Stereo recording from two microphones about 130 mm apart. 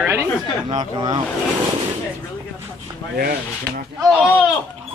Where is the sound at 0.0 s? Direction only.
15° right (ahead or behind).